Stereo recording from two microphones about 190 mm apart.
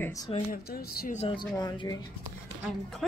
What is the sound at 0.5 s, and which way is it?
Speech, 55° left (ahead or behind).